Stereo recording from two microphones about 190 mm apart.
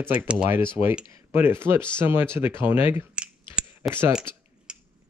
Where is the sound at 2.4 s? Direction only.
10° right (ahead or behind).